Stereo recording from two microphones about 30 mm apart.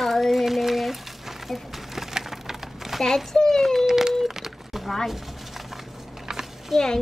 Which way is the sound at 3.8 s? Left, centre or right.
Centre.